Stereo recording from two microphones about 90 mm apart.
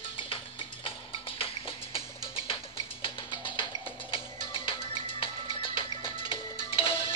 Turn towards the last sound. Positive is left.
turn(degrees=90)